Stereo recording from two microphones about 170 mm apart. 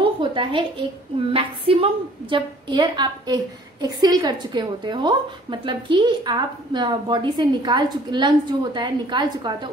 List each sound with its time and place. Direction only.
0.0 s a woman's voice: 30° right (ahead or behind)